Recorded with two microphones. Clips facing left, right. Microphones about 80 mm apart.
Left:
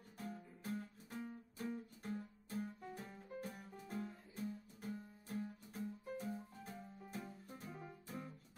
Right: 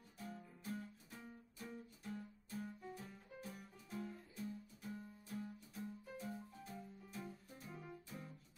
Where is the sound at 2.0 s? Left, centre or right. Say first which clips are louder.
Left 3 dB; left.